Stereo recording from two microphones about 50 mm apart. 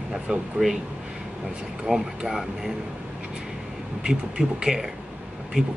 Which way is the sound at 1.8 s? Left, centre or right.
Centre.